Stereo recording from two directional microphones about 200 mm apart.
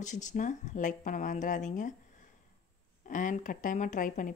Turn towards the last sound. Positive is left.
turn(degrees=40)  # may be behind; listen again after turning